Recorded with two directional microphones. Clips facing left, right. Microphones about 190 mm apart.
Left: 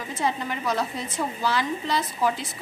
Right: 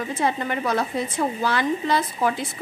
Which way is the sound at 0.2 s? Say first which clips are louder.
Right 2 dB; 55° right (ahead or behind).